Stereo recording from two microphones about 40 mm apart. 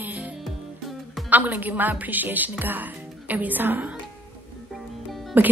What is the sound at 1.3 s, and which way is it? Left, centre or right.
A woman's voice, right.